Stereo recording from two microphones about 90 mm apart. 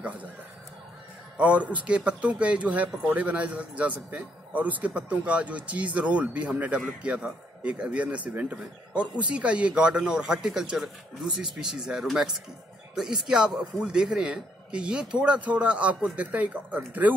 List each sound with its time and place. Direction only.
1.3 s speech: 15° right (ahead or behind)